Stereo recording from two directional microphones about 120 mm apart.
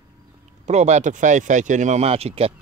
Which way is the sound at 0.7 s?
70° right (ahead or behind).